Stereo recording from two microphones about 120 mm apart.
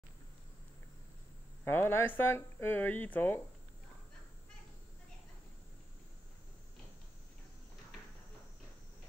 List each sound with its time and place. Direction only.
1.6 s speech: 20° left (ahead or behind)